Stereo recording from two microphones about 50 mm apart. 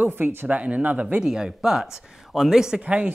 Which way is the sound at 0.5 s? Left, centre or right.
Right.